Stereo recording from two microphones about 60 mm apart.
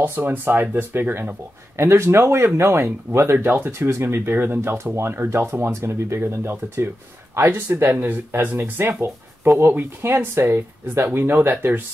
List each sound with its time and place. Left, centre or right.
0.0 s speech: right
1.8 s speech: right